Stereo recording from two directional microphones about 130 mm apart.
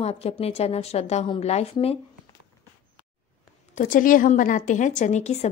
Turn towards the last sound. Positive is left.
turn(degrees=60)  # may be behind; listen again after turning